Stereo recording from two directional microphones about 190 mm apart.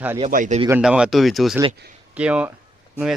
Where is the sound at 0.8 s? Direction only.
5° right (ahead or behind).